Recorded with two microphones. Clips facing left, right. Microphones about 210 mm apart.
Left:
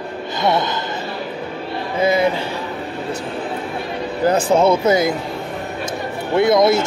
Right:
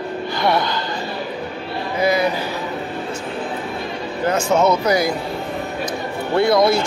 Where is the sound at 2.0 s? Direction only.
25° left (ahead or behind).